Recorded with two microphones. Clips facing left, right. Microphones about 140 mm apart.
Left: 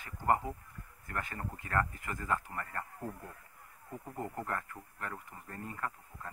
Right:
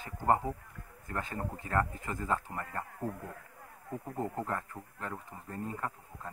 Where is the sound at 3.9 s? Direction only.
20° right (ahead or behind).